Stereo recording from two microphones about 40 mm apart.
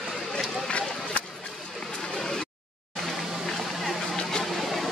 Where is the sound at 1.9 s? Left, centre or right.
Centre.